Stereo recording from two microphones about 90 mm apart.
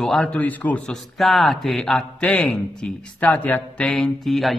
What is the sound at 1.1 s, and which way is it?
Speech, centre (ahead or behind).